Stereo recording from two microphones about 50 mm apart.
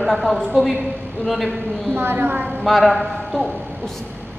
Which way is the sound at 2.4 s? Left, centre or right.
Centre.